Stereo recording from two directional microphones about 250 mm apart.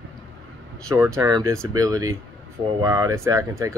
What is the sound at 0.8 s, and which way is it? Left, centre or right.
Speech, centre.